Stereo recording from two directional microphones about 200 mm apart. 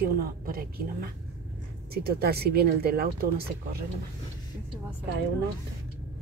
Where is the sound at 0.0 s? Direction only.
45° right (ahead or behind).